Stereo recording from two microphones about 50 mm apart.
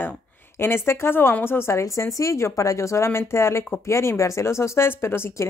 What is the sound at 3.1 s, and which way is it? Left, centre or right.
Speech, left.